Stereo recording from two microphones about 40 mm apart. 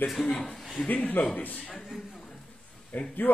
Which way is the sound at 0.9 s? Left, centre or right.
Left.